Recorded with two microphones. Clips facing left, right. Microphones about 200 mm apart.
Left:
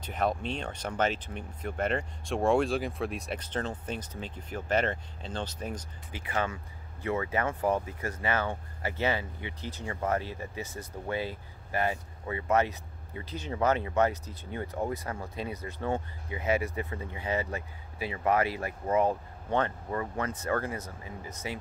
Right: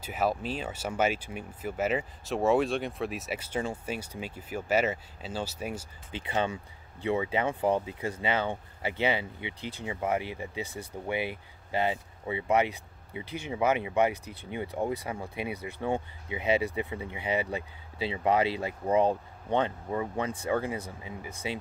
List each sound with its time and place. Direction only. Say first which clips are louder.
0.0 s speech: right 1 dB; 5° right (ahead or behind)
6.1 s speech: right 2 dB; 25° right (ahead or behind)